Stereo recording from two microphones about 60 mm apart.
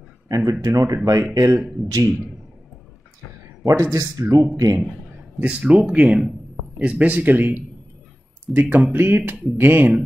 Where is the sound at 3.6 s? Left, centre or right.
Right.